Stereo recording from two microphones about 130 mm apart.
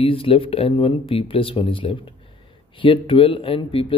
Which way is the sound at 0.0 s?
45° left (ahead or behind).